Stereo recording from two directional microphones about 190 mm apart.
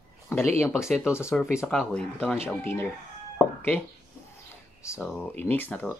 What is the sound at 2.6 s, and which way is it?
Speech, 10° left (ahead or behind).